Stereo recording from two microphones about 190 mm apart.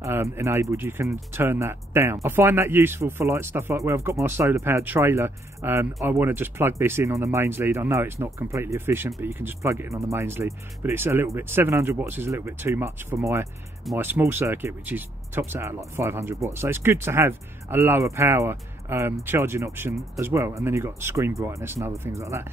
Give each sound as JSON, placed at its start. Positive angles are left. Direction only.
{"t": 0.0, "sound": "speech", "side_deg": -15}